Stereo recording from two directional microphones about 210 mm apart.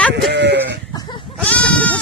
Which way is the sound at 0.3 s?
55° right (ahead or behind).